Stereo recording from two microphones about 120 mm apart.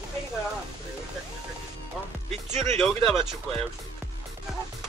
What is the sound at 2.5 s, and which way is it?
Speech, 70° right (ahead or behind).